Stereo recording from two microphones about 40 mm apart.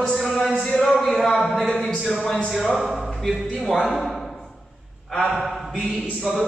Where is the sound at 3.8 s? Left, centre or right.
Centre.